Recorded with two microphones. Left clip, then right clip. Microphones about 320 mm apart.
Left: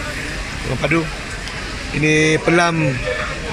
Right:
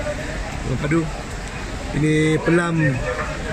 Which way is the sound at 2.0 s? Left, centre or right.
Left.